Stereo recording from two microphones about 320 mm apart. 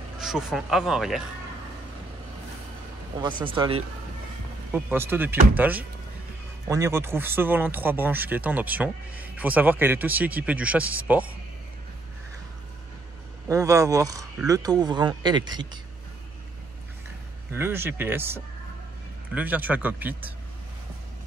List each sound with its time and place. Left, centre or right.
0.2 s speech: centre
3.2 s speech: centre
13.5 s speech: centre
17.5 s speech: centre